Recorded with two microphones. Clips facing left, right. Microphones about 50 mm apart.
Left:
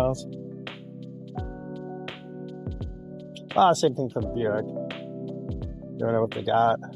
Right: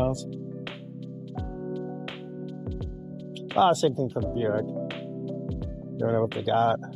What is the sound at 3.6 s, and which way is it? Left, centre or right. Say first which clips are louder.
Speech: left 2 dB; left.